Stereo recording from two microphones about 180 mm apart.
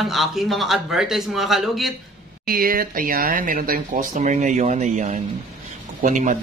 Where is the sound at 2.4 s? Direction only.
55° right (ahead or behind).